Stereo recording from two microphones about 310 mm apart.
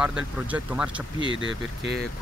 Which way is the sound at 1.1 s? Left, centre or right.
Centre.